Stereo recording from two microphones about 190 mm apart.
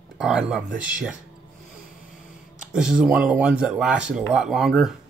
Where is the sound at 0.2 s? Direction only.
5° right (ahead or behind).